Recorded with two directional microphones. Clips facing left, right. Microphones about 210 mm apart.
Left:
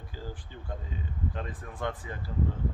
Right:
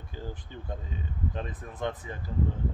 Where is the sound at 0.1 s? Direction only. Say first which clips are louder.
Right 3 dB; 20° right (ahead or behind).